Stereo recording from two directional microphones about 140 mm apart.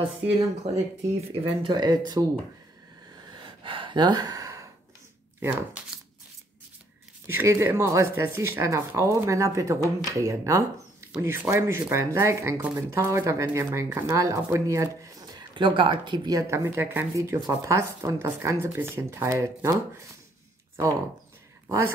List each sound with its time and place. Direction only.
1.0 s speech: 45° right (ahead or behind)
3.3 s gasp: 35° right (ahead or behind)
7.2 s speech: 20° right (ahead or behind)
21.6 s speech: 20° right (ahead or behind)